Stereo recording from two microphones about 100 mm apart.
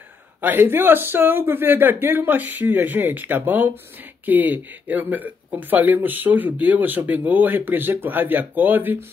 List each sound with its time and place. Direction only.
0.4 s speech: 20° right (ahead or behind)